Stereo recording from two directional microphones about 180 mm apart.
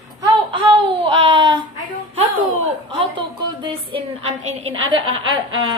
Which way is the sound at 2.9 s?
30° right (ahead or behind).